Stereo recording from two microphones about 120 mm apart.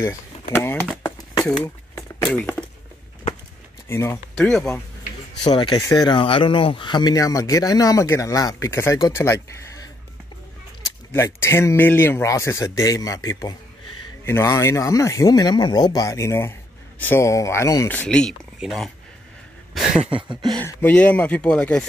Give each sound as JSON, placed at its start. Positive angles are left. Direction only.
{"t": 0.0, "sound": "speech", "side_deg": 25}
{"t": 1.6, "sound": "a sound", "side_deg": 20}
{"t": 3.9, "sound": "speech", "side_deg": 25}
{"t": 4.4, "sound": "speech", "side_deg": 5}
{"t": 5.4, "sound": "speech", "side_deg": 40}
{"t": 11.1, "sound": "speech", "side_deg": 20}
{"t": 17.8, "sound": "speech", "side_deg": 10}
{"t": 19.7, "sound": "a sound", "side_deg": 0}
{"t": 20.5, "sound": "speech", "side_deg": 15}